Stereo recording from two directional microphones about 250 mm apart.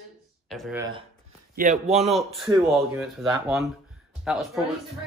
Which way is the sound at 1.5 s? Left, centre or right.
Right.